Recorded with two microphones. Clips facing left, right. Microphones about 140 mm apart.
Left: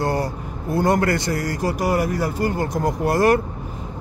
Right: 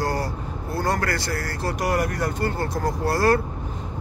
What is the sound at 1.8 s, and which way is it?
Speech, 5° left (ahead or behind).